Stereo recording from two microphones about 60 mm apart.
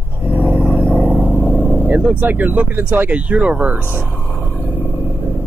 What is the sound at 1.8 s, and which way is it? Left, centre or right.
Speech, right.